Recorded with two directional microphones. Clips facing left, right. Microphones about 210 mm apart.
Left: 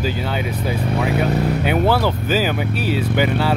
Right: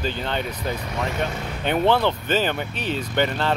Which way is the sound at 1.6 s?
5° left (ahead or behind).